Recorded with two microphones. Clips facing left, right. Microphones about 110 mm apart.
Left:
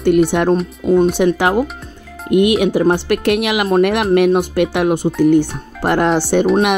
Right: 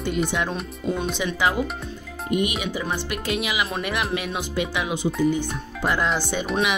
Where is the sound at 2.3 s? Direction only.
65° left (ahead or behind).